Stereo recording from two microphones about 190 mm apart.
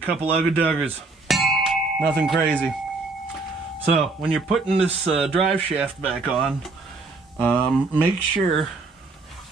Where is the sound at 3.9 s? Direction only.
Centre (ahead or behind).